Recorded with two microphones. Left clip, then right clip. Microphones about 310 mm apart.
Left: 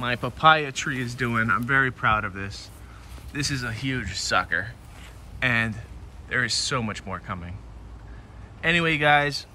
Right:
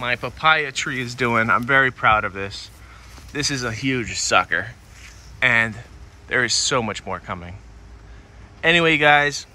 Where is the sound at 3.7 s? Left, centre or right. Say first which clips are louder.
Right 6 dB; centre.